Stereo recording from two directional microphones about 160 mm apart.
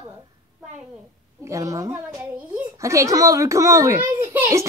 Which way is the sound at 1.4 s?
20° right (ahead or behind).